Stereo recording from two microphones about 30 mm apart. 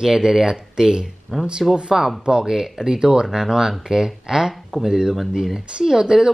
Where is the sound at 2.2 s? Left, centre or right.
Right.